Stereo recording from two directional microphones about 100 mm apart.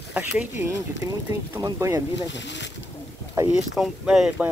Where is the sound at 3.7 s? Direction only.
5° right (ahead or behind).